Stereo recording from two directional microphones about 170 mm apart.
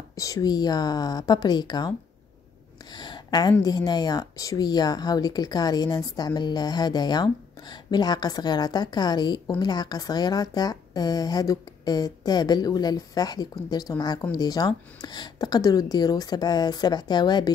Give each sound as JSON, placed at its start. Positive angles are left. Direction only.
{"t": 0.1, "sound": "a woman's voice", "side_deg": 20}
{"t": 3.0, "sound": "a sound", "side_deg": 25}
{"t": 3.6, "sound": "a woman's voice", "side_deg": 25}